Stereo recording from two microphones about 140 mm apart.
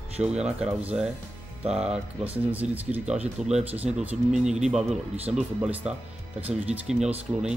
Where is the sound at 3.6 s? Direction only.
45° right (ahead or behind).